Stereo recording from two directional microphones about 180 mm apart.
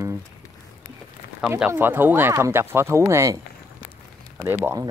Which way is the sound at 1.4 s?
5° right (ahead or behind).